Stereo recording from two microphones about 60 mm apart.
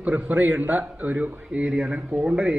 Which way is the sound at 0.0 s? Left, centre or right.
Right.